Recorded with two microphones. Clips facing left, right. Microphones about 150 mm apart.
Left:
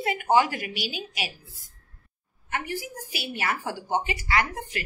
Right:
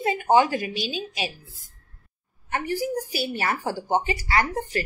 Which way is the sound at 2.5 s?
35° right (ahead or behind).